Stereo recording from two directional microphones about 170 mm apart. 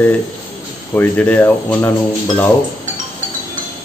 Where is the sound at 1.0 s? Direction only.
10° left (ahead or behind).